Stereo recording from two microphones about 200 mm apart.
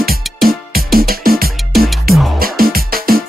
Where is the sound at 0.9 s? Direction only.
50° right (ahead or behind).